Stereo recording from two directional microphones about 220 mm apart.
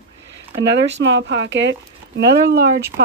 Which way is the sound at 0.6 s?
55° right (ahead or behind).